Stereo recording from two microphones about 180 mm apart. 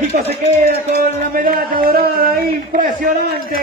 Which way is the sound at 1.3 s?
55° right (ahead or behind).